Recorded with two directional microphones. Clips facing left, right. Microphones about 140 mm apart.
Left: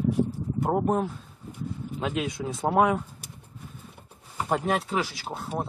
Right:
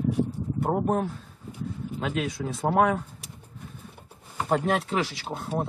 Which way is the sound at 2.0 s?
20° left (ahead or behind).